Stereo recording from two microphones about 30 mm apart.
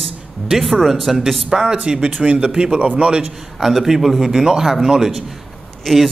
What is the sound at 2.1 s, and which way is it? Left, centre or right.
Speech, right.